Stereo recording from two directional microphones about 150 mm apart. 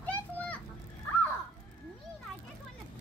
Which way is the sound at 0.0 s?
10° left (ahead or behind).